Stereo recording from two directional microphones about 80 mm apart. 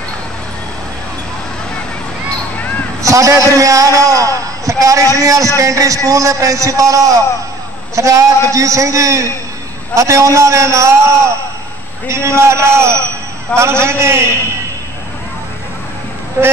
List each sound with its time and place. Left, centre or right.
3.0 s a man's voice: right
12.1 s a man's voice: right